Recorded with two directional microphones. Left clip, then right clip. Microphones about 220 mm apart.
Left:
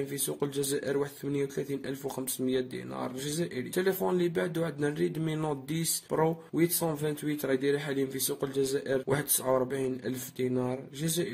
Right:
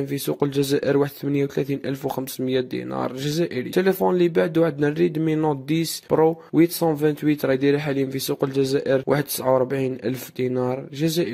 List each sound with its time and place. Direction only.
0.1 s speech: 35° right (ahead or behind)